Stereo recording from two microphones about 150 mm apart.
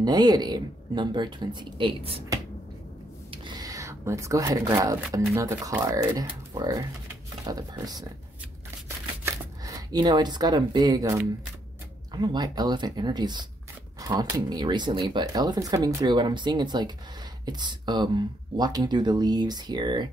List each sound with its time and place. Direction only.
0.0 s speech: 25° right (ahead or behind)
3.3 s a sound: 30° right (ahead or behind)
5.3 s speech: 20° right (ahead or behind)
8.8 s shuffling cards: 20° right (ahead or behind)
12.1 s speech: 30° right (ahead or behind)